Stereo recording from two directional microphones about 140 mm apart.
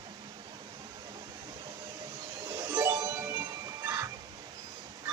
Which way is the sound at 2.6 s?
20° right (ahead or behind).